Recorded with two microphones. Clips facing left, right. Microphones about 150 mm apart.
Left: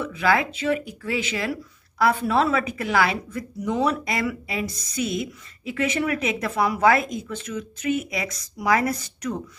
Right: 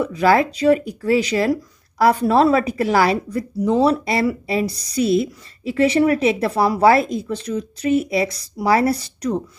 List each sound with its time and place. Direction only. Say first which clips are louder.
0.0 s speech: right 6 dB; 40° right (ahead or behind)